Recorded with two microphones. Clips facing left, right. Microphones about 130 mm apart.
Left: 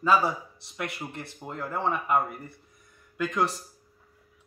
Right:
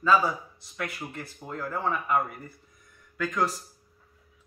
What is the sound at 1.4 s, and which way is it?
Speech, 25° left (ahead or behind).